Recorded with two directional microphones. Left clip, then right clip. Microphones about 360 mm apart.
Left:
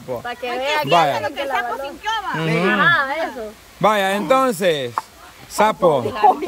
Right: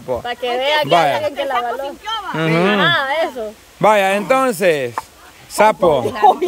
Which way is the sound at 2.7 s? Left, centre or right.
Right.